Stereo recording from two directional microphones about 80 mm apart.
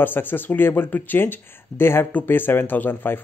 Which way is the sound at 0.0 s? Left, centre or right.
Left.